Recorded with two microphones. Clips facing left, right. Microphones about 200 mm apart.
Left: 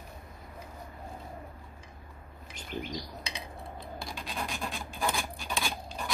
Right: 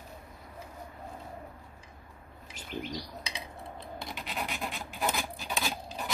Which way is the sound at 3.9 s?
20° right (ahead or behind).